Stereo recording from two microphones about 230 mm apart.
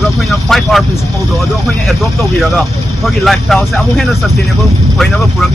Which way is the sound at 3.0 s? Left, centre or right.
Centre.